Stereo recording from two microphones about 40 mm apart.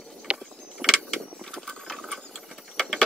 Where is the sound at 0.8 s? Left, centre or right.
Centre.